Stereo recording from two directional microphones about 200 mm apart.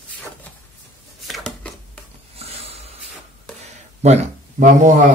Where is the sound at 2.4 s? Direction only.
30° right (ahead or behind).